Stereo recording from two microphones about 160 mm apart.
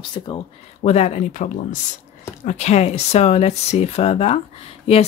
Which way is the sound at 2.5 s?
45° left (ahead or behind).